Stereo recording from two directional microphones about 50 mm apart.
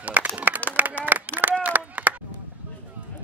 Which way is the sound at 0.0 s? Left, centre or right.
Right.